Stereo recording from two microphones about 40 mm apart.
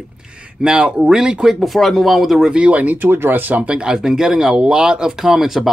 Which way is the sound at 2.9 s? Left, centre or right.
Right.